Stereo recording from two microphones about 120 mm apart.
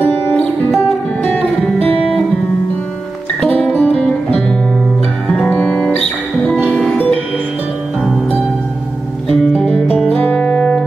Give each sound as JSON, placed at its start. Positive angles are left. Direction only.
{"t": 0.0, "sound": "music", "side_deg": 20}
{"t": 3.7, "sound": "music", "side_deg": 15}
{"t": 5.5, "sound": "music", "side_deg": 15}
{"t": 6.7, "sound": "music", "side_deg": 0}
{"t": 9.4, "sound": "music", "side_deg": 10}